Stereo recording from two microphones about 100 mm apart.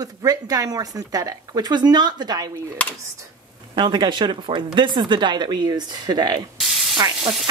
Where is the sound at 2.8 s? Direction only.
15° left (ahead or behind).